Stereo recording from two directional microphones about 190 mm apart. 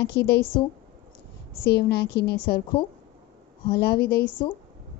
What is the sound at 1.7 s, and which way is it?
Speech, 60° left (ahead or behind).